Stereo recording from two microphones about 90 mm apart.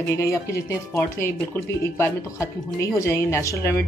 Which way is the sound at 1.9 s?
35° left (ahead or behind).